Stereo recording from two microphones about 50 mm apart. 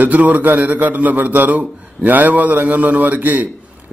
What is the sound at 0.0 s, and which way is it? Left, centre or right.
A man's voice, right.